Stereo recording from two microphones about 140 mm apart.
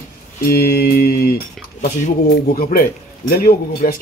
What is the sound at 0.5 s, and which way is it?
Speech, 90° left.